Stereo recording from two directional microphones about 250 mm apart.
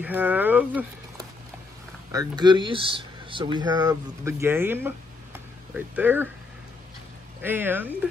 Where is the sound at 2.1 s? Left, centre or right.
Centre.